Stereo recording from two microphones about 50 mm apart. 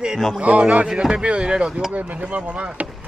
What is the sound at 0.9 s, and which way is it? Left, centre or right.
Speech, centre.